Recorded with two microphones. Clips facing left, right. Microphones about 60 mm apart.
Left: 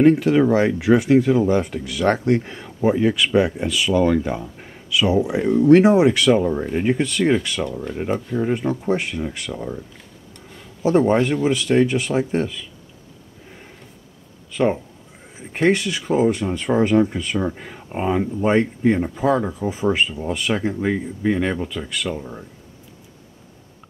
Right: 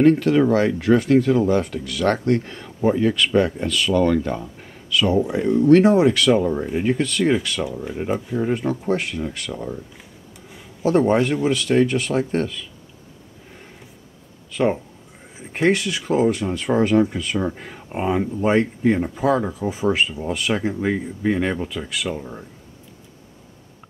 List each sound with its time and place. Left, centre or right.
0.0 s speech: centre
8.0 s speech: centre
10.8 s speech: centre
14.5 s speech: centre